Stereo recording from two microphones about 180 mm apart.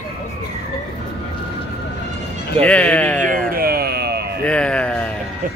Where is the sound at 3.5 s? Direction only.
60° right (ahead or behind).